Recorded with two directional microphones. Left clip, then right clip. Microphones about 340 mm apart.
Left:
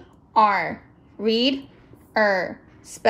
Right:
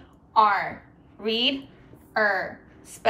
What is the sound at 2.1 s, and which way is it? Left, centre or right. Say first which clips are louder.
Speech: left 3 dB; centre.